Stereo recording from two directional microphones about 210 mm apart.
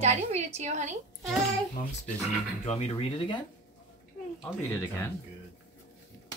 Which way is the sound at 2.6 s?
30° left (ahead or behind).